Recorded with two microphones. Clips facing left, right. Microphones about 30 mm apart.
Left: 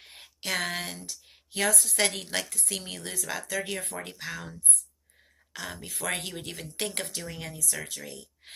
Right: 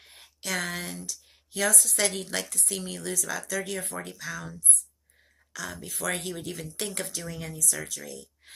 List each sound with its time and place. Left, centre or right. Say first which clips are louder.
0.0 s a sound: left 2 dB; left
1.0 s speech: right 2 dB; left
5.9 s speech: right 1 dB; left
7.9 s speech: right 1 dB; left